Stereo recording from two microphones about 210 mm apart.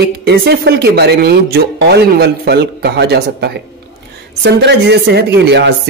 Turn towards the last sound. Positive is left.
turn(degrees=-55)  # may be behind; listen again after turning